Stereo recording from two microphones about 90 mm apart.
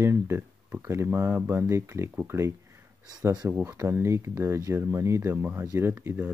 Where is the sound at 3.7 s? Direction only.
25° right (ahead or behind).